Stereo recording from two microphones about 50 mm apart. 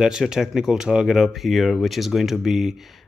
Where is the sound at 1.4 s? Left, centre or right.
Centre.